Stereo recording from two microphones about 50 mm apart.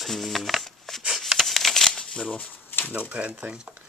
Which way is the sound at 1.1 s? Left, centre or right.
Centre.